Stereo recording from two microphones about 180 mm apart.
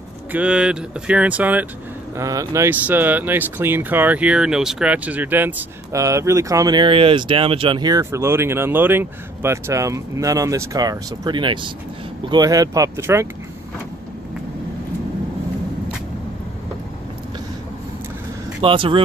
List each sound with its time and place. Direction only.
0.3 s speech: 5° right (ahead or behind)
18.6 s speech: 30° right (ahead or behind)